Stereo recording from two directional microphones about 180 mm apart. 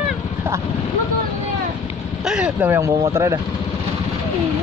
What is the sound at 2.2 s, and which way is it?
Speech, 5° right (ahead or behind).